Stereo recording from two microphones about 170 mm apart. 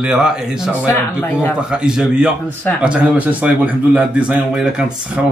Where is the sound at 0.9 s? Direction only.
10° left (ahead or behind).